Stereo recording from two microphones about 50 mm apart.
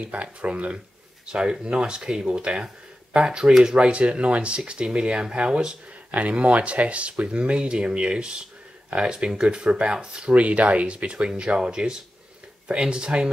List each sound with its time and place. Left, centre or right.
0.0 s speech: right